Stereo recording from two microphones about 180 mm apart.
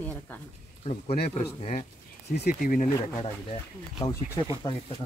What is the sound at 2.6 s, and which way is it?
Speech, 50° left (ahead or behind).